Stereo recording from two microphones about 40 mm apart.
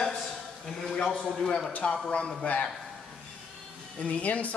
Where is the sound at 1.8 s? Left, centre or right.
Left.